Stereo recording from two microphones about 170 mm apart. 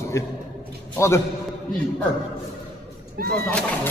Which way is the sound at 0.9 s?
15° left (ahead or behind).